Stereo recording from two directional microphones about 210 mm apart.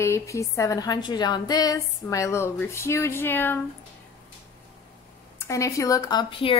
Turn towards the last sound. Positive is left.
turn(degrees=25)  # may be behind; listen again after turning